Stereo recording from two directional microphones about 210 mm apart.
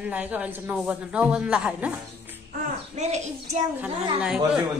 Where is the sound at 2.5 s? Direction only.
35° right (ahead or behind).